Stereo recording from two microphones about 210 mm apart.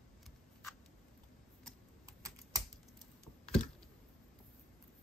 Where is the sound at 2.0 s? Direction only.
15° right (ahead or behind).